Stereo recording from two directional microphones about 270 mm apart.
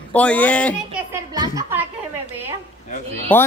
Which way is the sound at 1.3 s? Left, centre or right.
Centre.